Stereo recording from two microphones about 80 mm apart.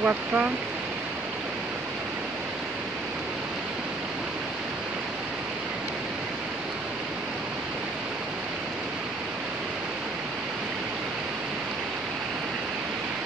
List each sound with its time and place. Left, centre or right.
0.0 s speech: centre